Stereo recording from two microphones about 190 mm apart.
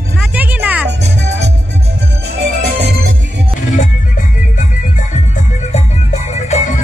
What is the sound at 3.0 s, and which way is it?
Music, 75° right (ahead or behind).